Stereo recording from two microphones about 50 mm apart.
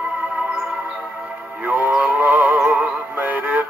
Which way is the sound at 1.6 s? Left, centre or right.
Right.